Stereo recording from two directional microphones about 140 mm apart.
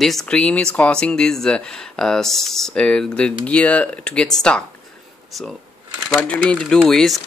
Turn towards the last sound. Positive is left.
turn(degrees=0)  # may be behind; listen again after turning